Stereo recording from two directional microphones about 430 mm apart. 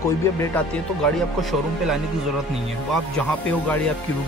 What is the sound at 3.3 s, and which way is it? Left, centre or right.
Speech, centre.